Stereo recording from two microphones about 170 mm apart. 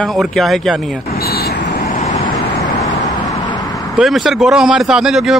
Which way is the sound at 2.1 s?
20° left (ahead or behind).